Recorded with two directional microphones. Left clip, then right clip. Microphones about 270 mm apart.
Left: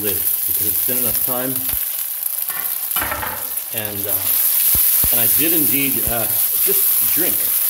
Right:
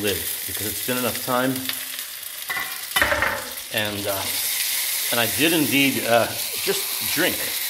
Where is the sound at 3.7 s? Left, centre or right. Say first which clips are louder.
Right 4 dB; centre.